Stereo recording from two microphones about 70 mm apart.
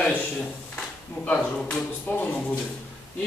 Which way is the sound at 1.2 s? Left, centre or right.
Left.